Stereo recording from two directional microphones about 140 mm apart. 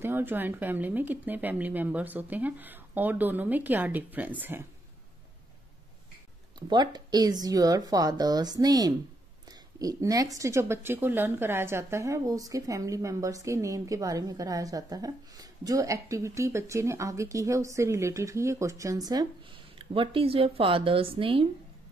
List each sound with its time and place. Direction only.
0.0 s speech: 15° right (ahead or behind)
6.7 s a woman's voice: 30° right (ahead or behind)
19.8 s speech: 40° right (ahead or behind)